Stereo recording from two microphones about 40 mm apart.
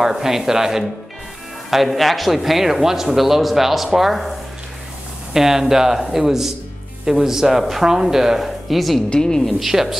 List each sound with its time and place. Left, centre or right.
0.0 s speech: centre
1.7 s speech: centre
5.3 s speech: centre
9.1 s a woman's voice: centre
9.6 s speech: centre